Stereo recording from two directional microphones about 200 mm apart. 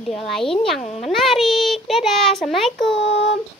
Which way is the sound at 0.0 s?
Centre (ahead or behind).